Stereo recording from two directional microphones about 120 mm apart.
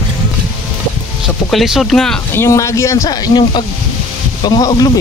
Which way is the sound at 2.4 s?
25° left (ahead or behind).